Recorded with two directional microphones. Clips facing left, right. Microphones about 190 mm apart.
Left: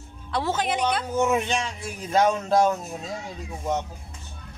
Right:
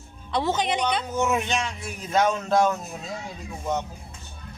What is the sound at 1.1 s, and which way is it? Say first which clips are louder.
Speech: left 3 dB; 30° left (ahead or behind).